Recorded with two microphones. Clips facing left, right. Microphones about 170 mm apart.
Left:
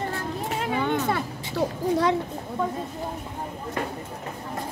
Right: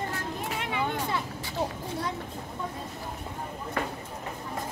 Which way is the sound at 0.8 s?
80° left.